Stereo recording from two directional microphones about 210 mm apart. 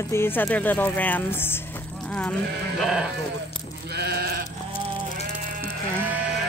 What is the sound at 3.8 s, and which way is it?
Sheep, 50° right (ahead or behind).